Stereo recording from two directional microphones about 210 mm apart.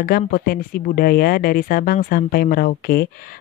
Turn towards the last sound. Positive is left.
turn(degrees=45)  # may be behind; listen again after turning